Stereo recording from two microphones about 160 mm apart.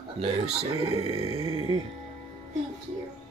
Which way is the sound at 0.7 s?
40° left (ahead or behind).